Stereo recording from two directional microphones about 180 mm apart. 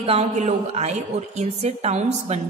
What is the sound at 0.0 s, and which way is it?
A woman's voice, 35° right (ahead or behind).